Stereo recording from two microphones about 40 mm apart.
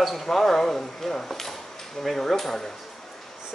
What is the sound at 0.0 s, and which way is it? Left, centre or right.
Speech, centre.